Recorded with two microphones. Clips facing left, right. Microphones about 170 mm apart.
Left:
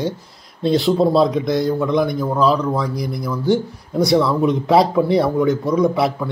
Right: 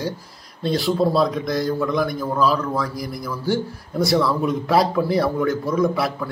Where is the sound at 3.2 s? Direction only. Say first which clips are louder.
Left 5 dB; 20° left (ahead or behind).